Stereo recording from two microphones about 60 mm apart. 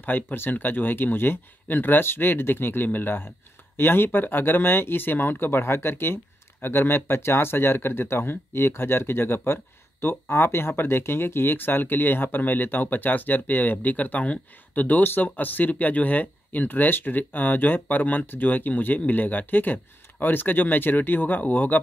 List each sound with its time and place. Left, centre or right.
0.0 s speech: left